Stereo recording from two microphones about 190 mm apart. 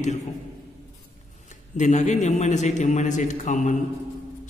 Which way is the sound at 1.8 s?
40° left (ahead or behind).